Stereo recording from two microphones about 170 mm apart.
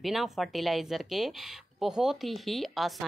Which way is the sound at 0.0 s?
Centre (ahead or behind).